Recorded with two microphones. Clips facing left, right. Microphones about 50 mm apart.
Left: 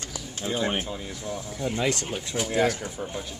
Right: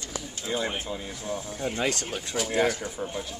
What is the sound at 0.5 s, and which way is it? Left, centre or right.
Speech, centre.